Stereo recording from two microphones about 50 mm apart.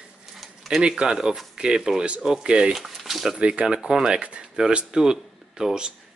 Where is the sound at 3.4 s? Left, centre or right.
Right.